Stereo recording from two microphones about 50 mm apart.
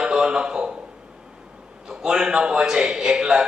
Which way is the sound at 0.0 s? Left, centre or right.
Centre.